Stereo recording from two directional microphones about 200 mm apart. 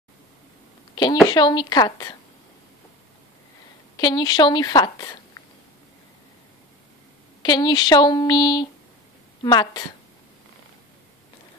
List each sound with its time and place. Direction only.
1.2 s a woman's voice: 20° left (ahead or behind)
3.9 s a woman's voice: 20° left (ahead or behind)
7.4 s a woman's voice: 20° left (ahead or behind)